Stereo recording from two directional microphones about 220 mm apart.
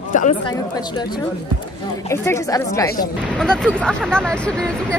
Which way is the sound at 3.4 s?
5° left (ahead or behind).